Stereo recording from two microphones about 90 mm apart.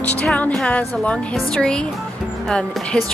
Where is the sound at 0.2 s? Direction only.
10° left (ahead or behind).